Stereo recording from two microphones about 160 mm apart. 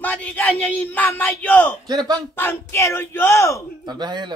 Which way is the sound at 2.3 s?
15° left (ahead or behind).